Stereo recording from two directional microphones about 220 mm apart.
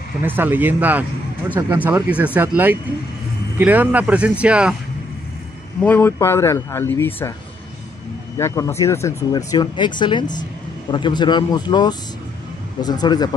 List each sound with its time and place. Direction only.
0.2 s speech: 10° right (ahead or behind)
5.8 s speech: 10° left (ahead or behind)
8.4 s speech: 10° left (ahead or behind)